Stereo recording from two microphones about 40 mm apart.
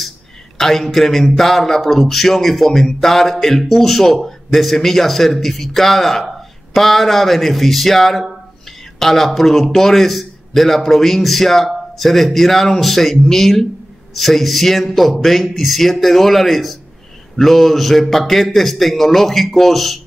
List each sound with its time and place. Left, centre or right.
0.6 s speech: centre